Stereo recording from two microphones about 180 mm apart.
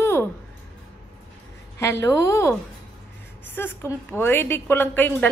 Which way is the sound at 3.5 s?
15° left (ahead or behind).